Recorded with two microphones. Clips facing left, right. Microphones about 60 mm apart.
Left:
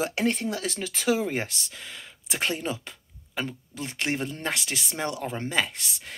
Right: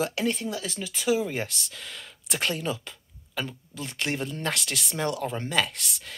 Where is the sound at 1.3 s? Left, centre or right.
Left.